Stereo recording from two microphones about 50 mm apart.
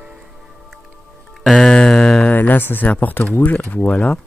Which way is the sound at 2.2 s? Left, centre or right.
Left.